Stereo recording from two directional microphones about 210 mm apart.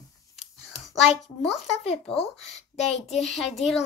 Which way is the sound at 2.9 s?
30° left (ahead or behind).